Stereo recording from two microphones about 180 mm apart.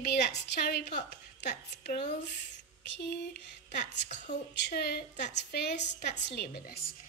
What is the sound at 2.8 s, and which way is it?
A woman's voice, 70° left (ahead or behind).